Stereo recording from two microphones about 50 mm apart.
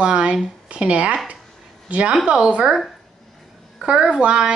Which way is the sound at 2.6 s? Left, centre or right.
Centre.